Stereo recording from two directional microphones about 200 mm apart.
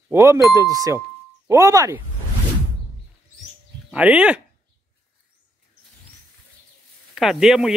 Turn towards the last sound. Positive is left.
turn(degrees=0)  # may be behind; listen again after turning